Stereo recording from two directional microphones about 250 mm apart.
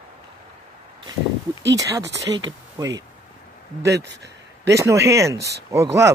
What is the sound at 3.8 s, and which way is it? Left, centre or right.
Speech, right.